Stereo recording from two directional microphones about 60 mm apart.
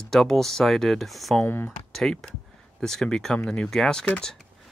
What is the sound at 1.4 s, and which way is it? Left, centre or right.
Speech, left.